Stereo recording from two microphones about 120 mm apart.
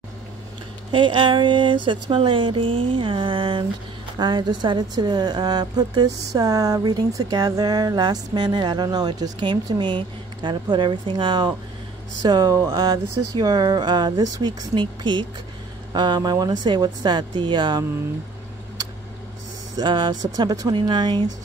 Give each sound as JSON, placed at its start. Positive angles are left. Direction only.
{"t": 0.9, "sound": "a woman's voice", "side_deg": -45}
{"t": 19.7, "sound": "a woman's voice", "side_deg": -40}